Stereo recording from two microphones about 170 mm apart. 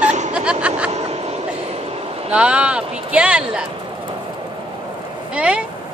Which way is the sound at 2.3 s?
5° right (ahead or behind).